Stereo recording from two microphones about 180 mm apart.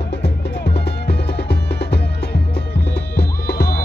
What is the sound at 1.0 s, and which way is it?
Music, 70° left (ahead or behind).